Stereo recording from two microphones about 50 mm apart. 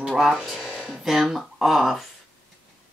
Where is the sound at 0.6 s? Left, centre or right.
Centre.